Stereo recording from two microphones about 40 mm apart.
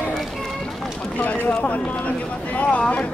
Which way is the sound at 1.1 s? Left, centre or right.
Left.